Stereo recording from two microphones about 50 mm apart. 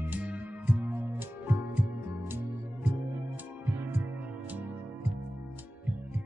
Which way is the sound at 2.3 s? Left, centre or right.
Right.